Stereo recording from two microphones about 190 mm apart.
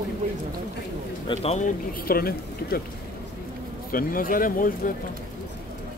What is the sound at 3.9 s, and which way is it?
Speech, 50° left (ahead or behind).